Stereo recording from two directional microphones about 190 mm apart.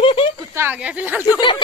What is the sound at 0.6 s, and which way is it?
Speech, 10° right (ahead or behind).